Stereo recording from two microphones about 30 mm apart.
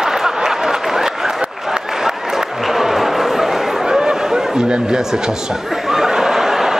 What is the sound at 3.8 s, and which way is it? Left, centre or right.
Chatter, centre.